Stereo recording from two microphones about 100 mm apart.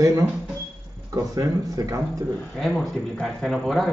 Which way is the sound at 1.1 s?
35° right (ahead or behind).